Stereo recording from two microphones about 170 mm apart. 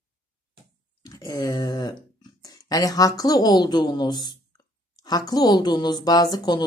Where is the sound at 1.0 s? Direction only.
20° left (ahead or behind).